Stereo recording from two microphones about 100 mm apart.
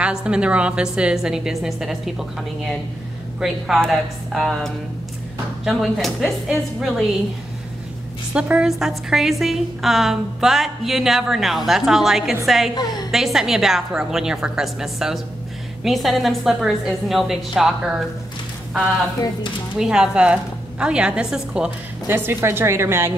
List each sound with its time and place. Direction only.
0.0 s a woman's voice: 10° right (ahead or behind)
3.3 s a woman's voice: 5° right (ahead or behind)
8.3 s a woman's voice: 10° right (ahead or behind)
12.7 s a woman's voice: 45° left (ahead or behind)
13.1 s a woman's voice: 5° right (ahead or behind)
19.8 s a woman's voice: 5° right (ahead or behind)
22.0 s a woman's voice: 20° right (ahead or behind)